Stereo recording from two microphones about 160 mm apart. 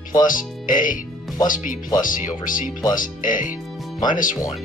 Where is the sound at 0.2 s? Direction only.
55° left (ahead or behind).